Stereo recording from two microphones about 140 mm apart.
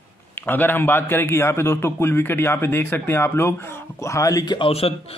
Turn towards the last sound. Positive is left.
turn(degrees=45)  # may be behind; listen again after turning